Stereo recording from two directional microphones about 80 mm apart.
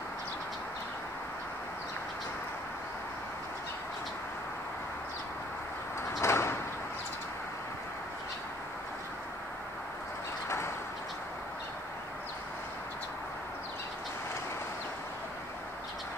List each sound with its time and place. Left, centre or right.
6.2 s sliding door: left